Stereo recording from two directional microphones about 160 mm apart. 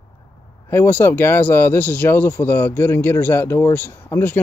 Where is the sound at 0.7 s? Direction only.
15° left (ahead or behind).